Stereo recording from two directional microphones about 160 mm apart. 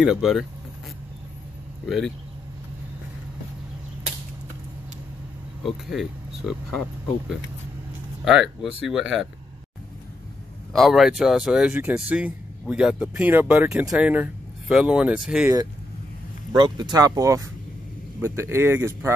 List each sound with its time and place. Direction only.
0.0 s speech: 5° right (ahead or behind)
1.9 s speech: centre (ahead or behind)
5.9 s speech: centre (ahead or behind)
8.3 s speech: 5° right (ahead or behind)
10.7 s speech: centre (ahead or behind)
16.5 s speech: 30° right (ahead or behind)